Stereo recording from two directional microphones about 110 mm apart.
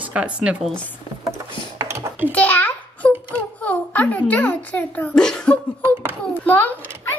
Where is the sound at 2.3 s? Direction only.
15° left (ahead or behind).